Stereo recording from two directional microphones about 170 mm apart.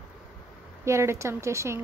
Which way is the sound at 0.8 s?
15° right (ahead or behind).